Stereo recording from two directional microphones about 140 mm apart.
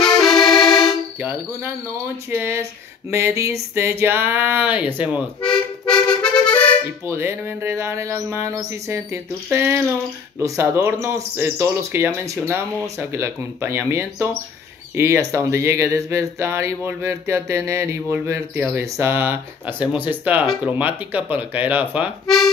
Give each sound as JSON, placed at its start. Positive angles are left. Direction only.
{"t": 0.0, "sound": "accordion", "side_deg": 5}
{"t": 2.3, "sound": "speech", "side_deg": -20}
{"t": 5.4, "sound": "music", "side_deg": 5}
{"t": 7.1, "sound": "speech", "side_deg": -15}